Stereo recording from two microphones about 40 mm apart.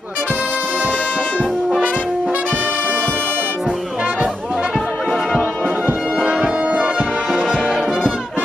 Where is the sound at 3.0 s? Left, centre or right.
Left.